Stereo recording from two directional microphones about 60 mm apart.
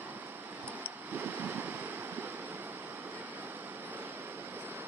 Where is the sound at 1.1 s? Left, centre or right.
Right.